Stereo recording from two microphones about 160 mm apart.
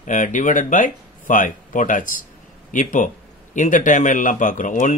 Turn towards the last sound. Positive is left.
turn(degrees=55)  # may be behind; listen again after turning